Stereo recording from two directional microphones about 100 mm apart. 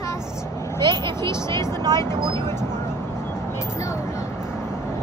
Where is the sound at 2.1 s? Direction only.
45° right (ahead or behind).